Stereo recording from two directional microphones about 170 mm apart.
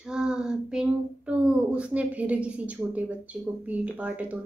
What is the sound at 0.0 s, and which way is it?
Child singing, 5° right (ahead or behind).